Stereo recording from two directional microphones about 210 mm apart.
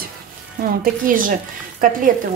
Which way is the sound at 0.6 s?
40° right (ahead or behind).